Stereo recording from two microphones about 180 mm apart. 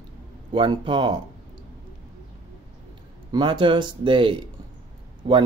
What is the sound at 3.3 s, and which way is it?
A man's voice, 25° right (ahead or behind).